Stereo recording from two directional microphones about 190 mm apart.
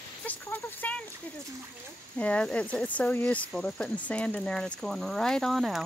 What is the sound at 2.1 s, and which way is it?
Speech, 5° left (ahead or behind).